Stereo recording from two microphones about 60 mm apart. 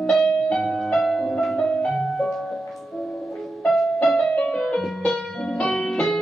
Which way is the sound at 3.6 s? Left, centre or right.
Centre.